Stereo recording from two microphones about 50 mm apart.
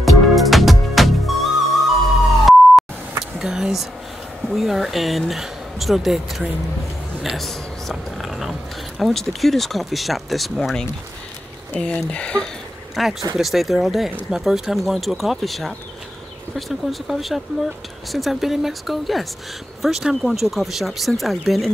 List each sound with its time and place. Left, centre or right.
0.0 s music: centre
3.3 s a sound: centre
4.5 s speech: centre
11.8 s speech: left
12.9 s speech: centre